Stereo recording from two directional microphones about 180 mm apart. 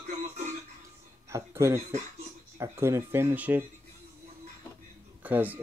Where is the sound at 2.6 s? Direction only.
15° right (ahead or behind).